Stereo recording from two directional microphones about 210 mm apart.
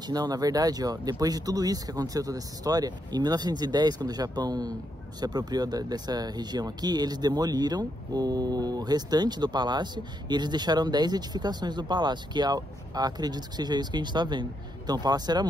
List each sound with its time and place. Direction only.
0.0 s speech: 20° right (ahead or behind)